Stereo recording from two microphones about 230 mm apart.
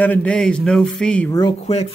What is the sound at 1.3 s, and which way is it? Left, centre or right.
Speech, left.